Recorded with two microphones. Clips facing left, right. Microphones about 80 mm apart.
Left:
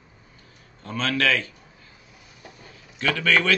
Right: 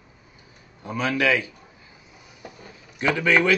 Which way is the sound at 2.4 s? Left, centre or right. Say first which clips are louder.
Right 4 dB; centre.